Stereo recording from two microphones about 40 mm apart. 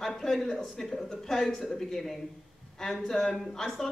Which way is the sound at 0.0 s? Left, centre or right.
Centre.